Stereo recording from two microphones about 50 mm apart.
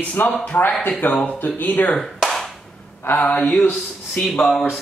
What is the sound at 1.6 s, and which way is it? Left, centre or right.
Speech, left.